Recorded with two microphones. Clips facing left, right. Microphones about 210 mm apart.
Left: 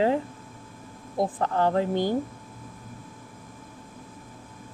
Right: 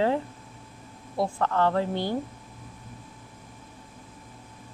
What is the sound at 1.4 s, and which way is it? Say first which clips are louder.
Speech: even; 15° left (ahead or behind).